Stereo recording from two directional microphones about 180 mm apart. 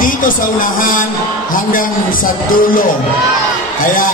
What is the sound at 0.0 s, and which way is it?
Speech, 50° left (ahead or behind).